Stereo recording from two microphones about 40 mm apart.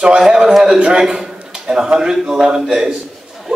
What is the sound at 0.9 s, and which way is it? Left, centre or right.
A man's voice, centre.